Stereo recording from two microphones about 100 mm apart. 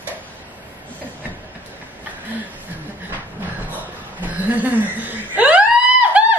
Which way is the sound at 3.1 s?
15° right (ahead or behind).